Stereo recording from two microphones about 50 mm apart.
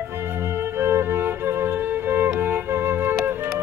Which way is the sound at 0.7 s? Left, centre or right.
Right.